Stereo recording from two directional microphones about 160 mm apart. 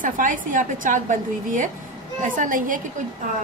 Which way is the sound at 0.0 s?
55° right (ahead or behind).